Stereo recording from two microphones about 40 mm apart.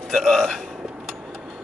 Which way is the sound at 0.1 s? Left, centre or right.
Centre.